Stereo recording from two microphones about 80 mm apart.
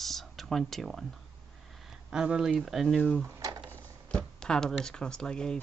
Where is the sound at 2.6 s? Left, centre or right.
Centre.